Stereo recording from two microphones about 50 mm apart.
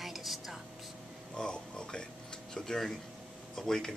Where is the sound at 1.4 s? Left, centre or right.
Centre.